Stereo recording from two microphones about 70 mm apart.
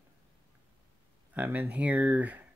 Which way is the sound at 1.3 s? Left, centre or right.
Right.